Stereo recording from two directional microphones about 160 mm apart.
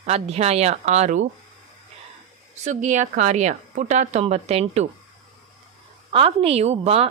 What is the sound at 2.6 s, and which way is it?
A woman's voice, 50° right (ahead or behind).